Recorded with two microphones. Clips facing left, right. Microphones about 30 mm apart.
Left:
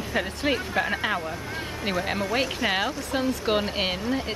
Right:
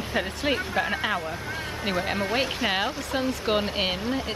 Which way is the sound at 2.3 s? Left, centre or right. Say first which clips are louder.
Left 1 dB; centre.